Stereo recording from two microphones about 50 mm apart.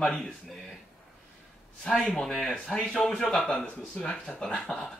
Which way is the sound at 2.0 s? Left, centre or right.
Centre.